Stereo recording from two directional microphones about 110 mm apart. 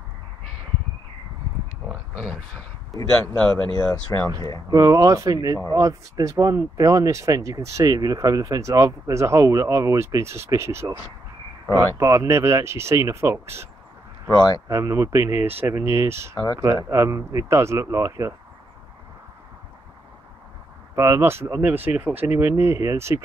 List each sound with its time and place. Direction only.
2.2 s speech: 5° left (ahead or behind)
3.7 s speech: 25° left (ahead or behind)
4.6 s speech: 30° right (ahead or behind)
14.7 s speech: 30° right (ahead or behind)
20.9 s speech: 25° right (ahead or behind)